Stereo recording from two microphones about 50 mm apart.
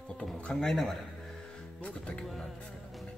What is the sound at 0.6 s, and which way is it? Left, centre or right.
Speech, centre.